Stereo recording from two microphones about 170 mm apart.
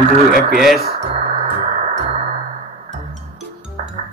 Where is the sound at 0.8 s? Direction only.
35° right (ahead or behind).